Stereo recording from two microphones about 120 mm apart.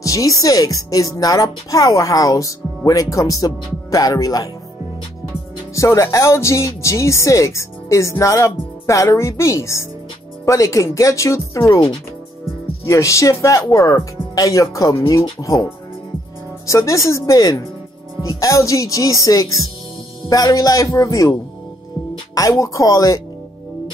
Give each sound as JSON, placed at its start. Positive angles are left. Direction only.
{"t": 0.0, "sound": "speech", "side_deg": 25}
{"t": 5.8, "sound": "speech", "side_deg": 25}
{"t": 16.6, "sound": "speech", "side_deg": 25}